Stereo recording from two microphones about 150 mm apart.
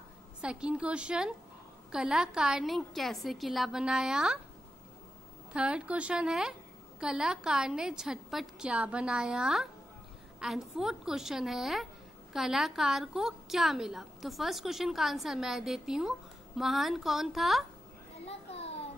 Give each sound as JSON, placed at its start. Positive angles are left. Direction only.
{"t": 0.4, "sound": "a woman's voice", "side_deg": -5}
{"t": 5.5, "sound": "a woman's voice", "side_deg": -5}
{"t": 18.2, "sound": "children playing", "side_deg": 45}